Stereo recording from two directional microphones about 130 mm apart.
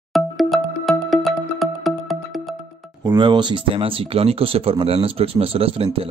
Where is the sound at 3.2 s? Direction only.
35° right (ahead or behind).